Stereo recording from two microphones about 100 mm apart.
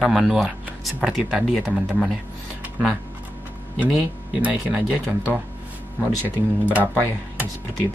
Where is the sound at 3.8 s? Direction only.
15° right (ahead or behind).